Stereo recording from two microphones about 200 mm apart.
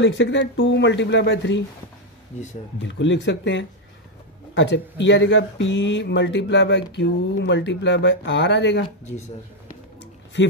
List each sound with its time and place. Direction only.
0.0 s speech: 65° left (ahead or behind)
2.9 s speech: 65° left (ahead or behind)